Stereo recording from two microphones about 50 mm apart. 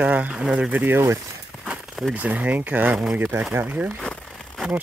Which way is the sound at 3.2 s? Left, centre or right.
Right.